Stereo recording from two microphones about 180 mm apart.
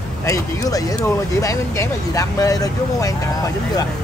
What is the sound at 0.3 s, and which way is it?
Speech, 20° left (ahead or behind).